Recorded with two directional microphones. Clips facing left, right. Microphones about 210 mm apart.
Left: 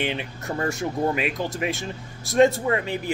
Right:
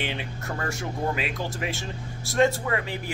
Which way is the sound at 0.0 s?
20° left (ahead or behind).